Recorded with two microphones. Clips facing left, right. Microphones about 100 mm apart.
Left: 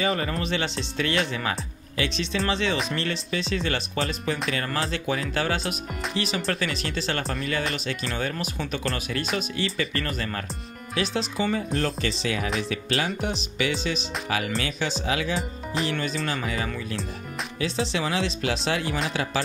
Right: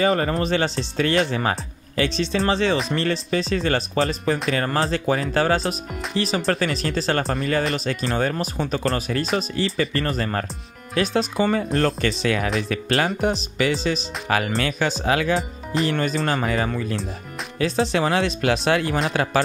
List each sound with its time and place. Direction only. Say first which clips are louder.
0.0 s speech: right 6 dB; 40° right (ahead or behind)
11.0 s speech: right 6 dB; 50° right (ahead or behind)
15.3 s speech: right 5 dB; centre (ahead or behind)
15.9 s speech: right 6 dB; 45° right (ahead or behind)
17.7 s speech: right 6 dB; 55° right (ahead or behind)